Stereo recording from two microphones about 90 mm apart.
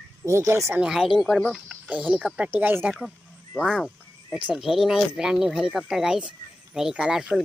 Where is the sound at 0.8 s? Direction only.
5° right (ahead or behind).